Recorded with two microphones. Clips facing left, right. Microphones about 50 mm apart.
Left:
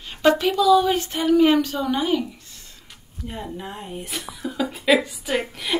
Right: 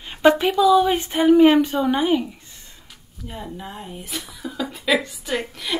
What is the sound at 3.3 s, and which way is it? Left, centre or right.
A woman's voice, centre.